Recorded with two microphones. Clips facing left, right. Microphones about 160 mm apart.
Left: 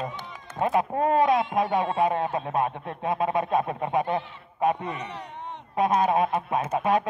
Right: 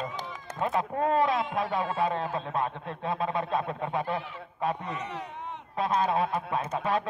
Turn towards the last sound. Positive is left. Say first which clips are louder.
# left 5 dB
turn(degrees=15)  # may be behind; listen again after turning